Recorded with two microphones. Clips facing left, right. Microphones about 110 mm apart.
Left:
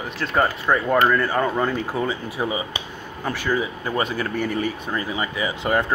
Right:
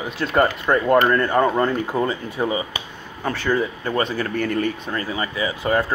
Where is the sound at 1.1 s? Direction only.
5° left (ahead or behind).